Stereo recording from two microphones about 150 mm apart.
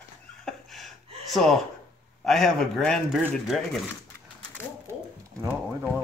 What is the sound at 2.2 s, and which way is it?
A man's voice, centre (ahead or behind).